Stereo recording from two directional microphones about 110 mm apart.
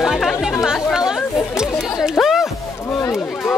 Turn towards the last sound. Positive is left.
turn(degrees=25)  # may be behind; listen again after turning